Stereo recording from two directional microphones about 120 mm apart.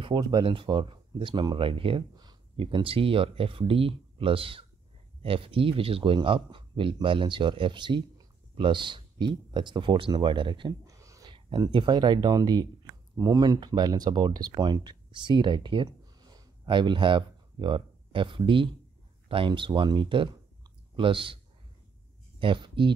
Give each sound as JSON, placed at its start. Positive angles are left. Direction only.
{"t": 0.0, "sound": "a man's voice", "side_deg": -35}
{"t": 10.9, "sound": "a sound", "side_deg": -25}
{"t": 11.2, "sound": "a man's voice", "side_deg": -40}
{"t": 22.4, "sound": "speech", "side_deg": -45}